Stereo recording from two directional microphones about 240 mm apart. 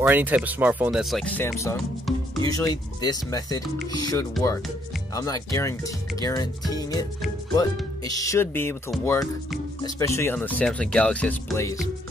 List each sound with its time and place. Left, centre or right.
0.0 s speech: centre
8.1 s speech: centre